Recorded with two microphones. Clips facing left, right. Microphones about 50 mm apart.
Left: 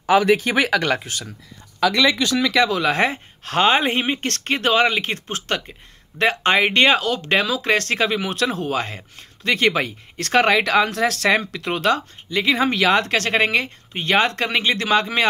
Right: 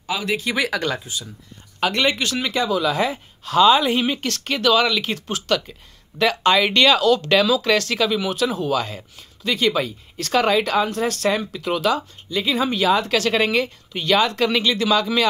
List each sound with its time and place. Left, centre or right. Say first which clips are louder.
0.0 s speech: left 8 dB; left
0.7 s speech: left 4 dB; left
2.5 s speech: even; left
11.7 s speech: left 1 dB; left
13.1 s speech: even; left